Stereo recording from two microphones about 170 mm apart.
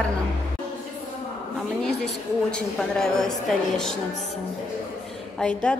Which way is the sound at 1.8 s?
5° left (ahead or behind).